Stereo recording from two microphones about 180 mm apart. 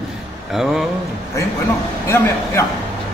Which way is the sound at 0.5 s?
Centre (ahead or behind).